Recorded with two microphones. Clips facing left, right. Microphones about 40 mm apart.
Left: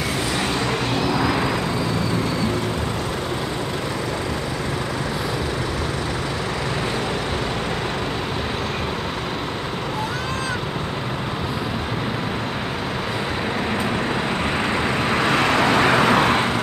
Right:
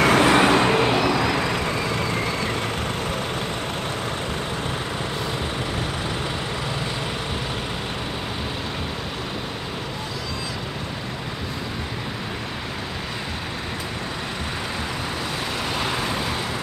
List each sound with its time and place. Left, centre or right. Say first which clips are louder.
0.0 s vehicle: right 8 dB; right
0.7 s vehicle: right 4 dB; right
15.0 s vehicle: left 9 dB; left